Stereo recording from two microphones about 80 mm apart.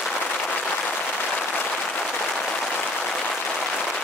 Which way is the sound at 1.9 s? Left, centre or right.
Centre.